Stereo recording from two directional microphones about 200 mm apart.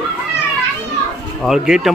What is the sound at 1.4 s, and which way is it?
Speech, centre (ahead or behind).